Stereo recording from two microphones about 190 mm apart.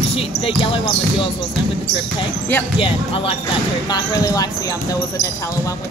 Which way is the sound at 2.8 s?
30° left (ahead or behind).